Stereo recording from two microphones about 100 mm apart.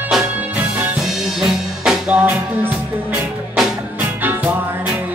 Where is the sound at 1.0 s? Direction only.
Centre (ahead or behind).